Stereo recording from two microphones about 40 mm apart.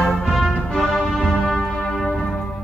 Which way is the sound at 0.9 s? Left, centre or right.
Centre.